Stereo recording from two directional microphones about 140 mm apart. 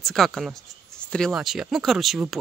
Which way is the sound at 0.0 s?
Centre (ahead or behind).